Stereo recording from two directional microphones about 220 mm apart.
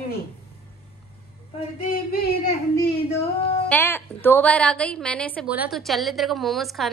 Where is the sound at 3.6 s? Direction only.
10° left (ahead or behind).